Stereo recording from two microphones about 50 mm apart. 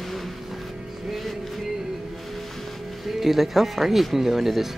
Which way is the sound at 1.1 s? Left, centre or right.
Centre.